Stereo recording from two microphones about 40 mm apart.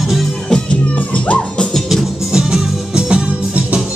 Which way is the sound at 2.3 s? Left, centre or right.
Centre.